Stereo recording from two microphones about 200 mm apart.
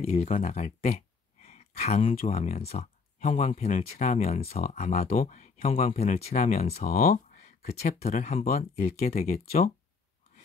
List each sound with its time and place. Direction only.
0.0 s speech: 30° left (ahead or behind)
6.8 s speech: 45° left (ahead or behind)
7.1 s speech: 35° left (ahead or behind)